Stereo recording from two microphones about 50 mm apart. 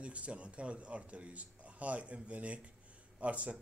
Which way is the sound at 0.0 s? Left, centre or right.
Right.